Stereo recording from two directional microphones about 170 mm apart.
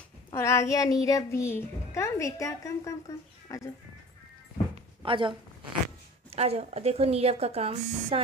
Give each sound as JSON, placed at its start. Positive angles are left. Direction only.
{"t": 0.3, "sound": "a woman's voice", "side_deg": 15}
{"t": 5.0, "sound": "speech", "side_deg": -30}
{"t": 6.3, "sound": "speech", "side_deg": -35}